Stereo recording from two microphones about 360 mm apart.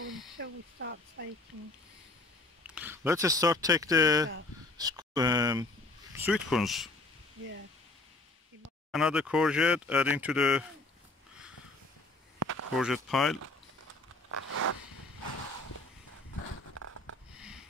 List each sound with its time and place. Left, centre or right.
0.4 s speech: right
2.6 s speech: centre
8.9 s speech: centre
12.4 s a sound: right
12.7 s speech: centre
14.3 s zipper: right